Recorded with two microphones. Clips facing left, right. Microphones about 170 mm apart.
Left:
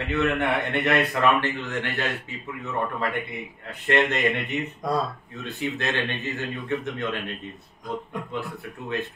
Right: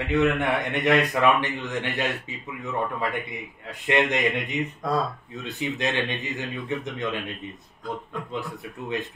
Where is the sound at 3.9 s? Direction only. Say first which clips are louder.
Even; 15° right (ahead or behind).